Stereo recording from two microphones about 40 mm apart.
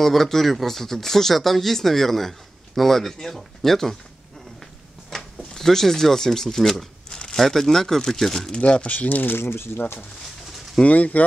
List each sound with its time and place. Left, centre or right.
0.0 s speech: centre
5.5 s speech: centre
7.1 s crumpling: centre
7.3 s speech: centre
8.5 s speech: left
8.9 s speech: left
9.3 s speech: left
9.8 s speech: left
10.8 s speech: left